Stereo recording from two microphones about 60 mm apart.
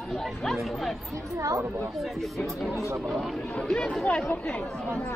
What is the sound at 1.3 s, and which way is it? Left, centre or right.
Speech, right.